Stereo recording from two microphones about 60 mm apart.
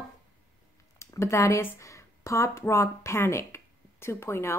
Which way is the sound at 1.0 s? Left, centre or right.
Left.